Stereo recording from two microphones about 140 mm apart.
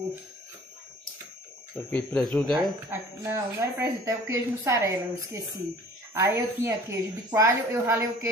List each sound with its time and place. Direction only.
1.8 s speech: 10° left (ahead or behind)
2.9 s a woman's voice: 15° right (ahead or behind)